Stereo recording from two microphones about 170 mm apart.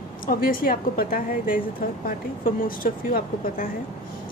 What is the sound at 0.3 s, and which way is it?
A woman's voice, 55° left (ahead or behind).